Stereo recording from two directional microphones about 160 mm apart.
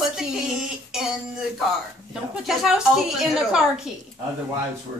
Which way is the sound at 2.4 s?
5° right (ahead or behind).